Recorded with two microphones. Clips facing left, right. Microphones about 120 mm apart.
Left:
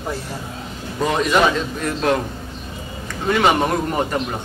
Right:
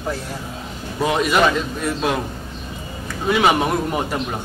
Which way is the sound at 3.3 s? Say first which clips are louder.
Even; 10° right (ahead or behind).